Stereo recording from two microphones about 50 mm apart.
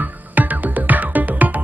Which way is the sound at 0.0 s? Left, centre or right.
Right.